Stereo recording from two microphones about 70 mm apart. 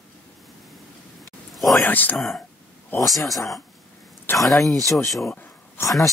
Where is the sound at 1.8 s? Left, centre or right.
Left.